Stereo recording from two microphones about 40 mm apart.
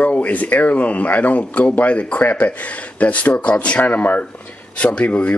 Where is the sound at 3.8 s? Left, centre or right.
Left.